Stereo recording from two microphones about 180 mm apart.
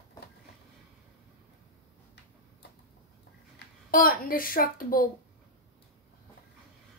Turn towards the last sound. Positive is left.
turn(degrees=55)  # may be behind; listen again after turning